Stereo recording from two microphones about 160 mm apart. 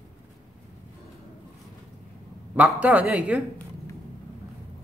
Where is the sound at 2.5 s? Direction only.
10° right (ahead or behind).